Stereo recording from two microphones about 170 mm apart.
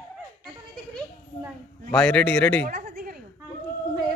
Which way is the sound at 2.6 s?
50° right (ahead or behind).